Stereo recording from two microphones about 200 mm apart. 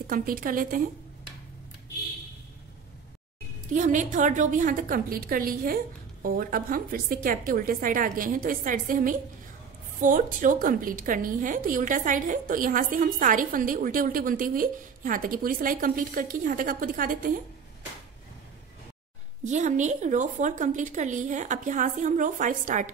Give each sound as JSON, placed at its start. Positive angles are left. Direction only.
{"t": 0.0, "sound": "a woman's voice", "side_deg": -45}
{"t": 3.7, "sound": "a woman's voice", "side_deg": -40}
{"t": 19.4, "sound": "a woman's voice", "side_deg": -35}